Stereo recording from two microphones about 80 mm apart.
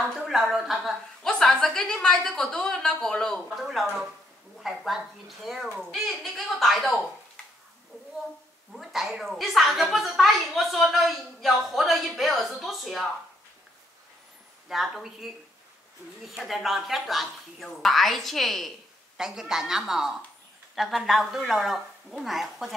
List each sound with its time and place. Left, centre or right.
0.0 s a sound: centre
0.4 s a woman's voice: centre
8.7 s a woman's voice: centre
14.7 s a woman's voice: centre